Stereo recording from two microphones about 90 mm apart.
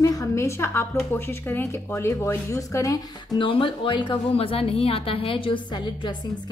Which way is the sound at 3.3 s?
65° left (ahead or behind).